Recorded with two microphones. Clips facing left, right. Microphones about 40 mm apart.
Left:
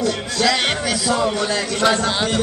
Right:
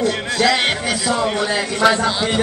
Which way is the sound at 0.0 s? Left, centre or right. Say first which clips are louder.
Right 2 dB; centre.